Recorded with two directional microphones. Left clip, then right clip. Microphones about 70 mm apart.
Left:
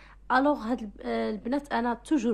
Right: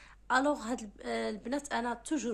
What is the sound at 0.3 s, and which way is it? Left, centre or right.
A woman's voice, left.